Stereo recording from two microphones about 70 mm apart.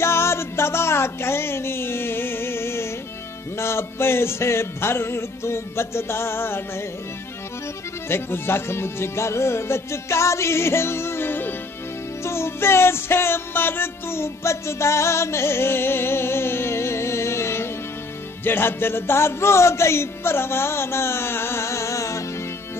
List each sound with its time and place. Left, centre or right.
0.0 s music: left
3.5 s speech: left
8.1 s speech: left
12.2 s music: left